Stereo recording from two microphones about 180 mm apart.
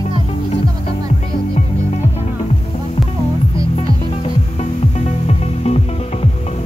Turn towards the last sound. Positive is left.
turn(degrees=35)  # may be behind; listen again after turning